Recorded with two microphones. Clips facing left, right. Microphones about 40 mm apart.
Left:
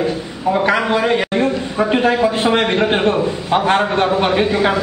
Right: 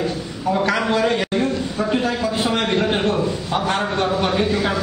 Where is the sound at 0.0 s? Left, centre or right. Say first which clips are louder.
Left 4 dB; centre.